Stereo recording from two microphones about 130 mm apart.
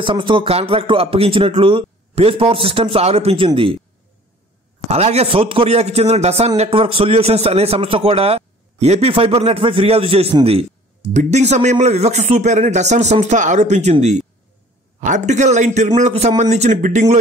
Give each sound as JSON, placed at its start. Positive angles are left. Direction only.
{"t": 0.0, "sound": "a man's voice", "side_deg": -40}
{"t": 4.8, "sound": "a man's voice", "side_deg": -55}
{"t": 11.1, "sound": "speech", "side_deg": -60}